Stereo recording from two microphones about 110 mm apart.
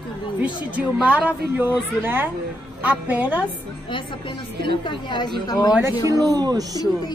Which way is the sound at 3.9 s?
50° left (ahead or behind).